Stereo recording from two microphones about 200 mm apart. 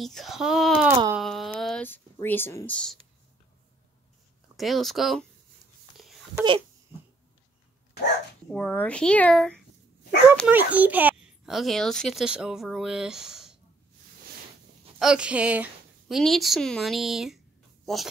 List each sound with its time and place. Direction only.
0.0 s a child's voice: centre (ahead or behind)
1.1 s a sound: centre (ahead or behind)
4.6 s a child's voice: centre (ahead or behind)
6.3 s a sound: 25° right (ahead or behind)
8.5 s a child's voice: 5° left (ahead or behind)
10.3 s a child's voice: 5° right (ahead or behind)
15.0 s a child's voice: 5° right (ahead or behind)